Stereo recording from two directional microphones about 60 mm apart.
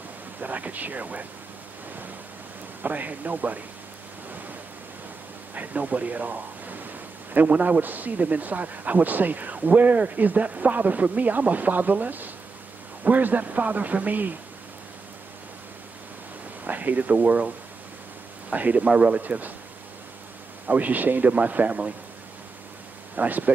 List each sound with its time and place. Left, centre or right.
0.4 s a man's voice: right
2.8 s a man's voice: right
5.5 s a man's voice: right
16.6 s speech: right
18.5 s a man's voice: right
20.6 s a man's voice: right
23.1 s a man's voice: right